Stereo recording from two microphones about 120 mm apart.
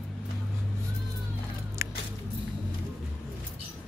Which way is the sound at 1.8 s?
20° right (ahead or behind).